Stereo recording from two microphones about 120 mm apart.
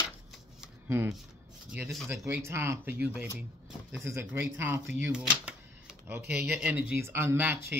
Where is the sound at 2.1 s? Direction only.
15° right (ahead or behind).